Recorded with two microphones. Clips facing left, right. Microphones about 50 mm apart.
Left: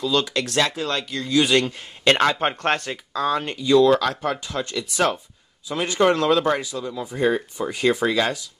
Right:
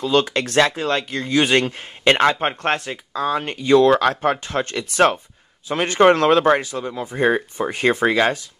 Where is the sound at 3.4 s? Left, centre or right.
Right.